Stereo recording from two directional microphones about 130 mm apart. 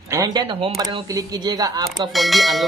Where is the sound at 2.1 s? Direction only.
Centre (ahead or behind).